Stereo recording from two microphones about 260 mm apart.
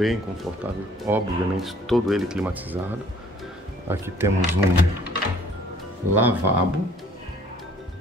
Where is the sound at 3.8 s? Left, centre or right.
Centre.